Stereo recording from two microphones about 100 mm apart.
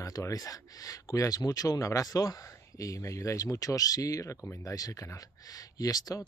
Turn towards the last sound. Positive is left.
turn(degrees=35)  # may be behind; listen again after turning